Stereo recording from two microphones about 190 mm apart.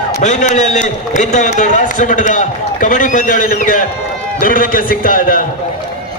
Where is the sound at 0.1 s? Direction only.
40° left (ahead or behind).